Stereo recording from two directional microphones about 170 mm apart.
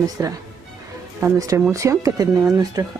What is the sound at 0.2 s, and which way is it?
Speech, 15° right (ahead or behind).